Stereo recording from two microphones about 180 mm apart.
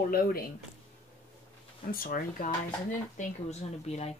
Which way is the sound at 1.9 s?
55° left (ahead or behind).